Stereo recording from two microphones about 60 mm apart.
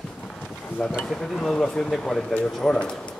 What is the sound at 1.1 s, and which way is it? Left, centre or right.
Speech, centre.